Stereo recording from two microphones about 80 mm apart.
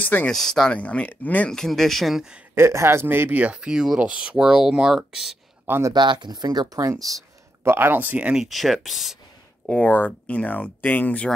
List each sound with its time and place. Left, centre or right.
0.0 s speech: left
0.3 s speech: centre
0.7 s speech: centre
1.5 s speech: centre
2.5 s speech: right; by 5.4 s centre
5.7 s speech: right
5.9 s speech: right
7.0 s speech: centre
7.6 s speech: right
8.5 s speech: centre
9.7 s speech: centre